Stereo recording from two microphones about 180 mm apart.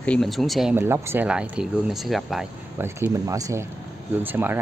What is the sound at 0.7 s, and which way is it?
Speech, 15° right (ahead or behind).